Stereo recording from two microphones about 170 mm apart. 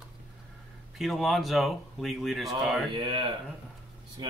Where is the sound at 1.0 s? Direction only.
Centre (ahead or behind).